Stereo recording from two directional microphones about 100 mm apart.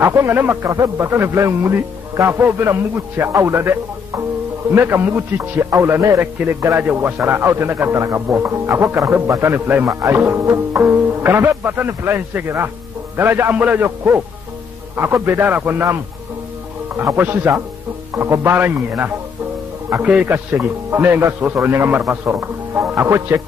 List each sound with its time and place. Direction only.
0.0 s a man's voice: 25° right (ahead or behind)